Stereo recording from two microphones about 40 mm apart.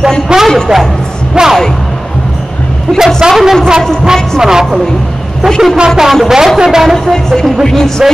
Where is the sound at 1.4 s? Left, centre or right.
Right.